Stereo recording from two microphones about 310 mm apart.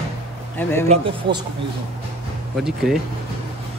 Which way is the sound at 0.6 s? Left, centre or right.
Centre.